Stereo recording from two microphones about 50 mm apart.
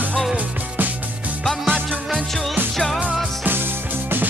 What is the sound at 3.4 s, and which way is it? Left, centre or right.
Music, right.